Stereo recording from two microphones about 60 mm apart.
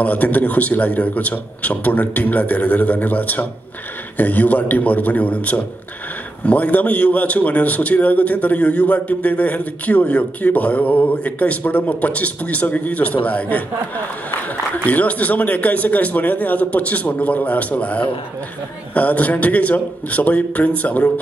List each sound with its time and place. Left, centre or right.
0.0 s a man's voice: left
14.9 s a man's voice: left